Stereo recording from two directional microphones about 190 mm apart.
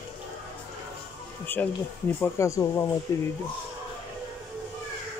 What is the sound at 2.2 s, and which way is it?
Speech, 15° left (ahead or behind).